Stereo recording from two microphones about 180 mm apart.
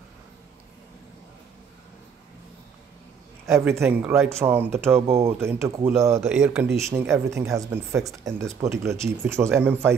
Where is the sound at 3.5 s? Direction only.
15° right (ahead or behind).